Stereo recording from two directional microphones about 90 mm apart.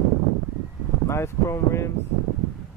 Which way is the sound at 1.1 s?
30° left (ahead or behind).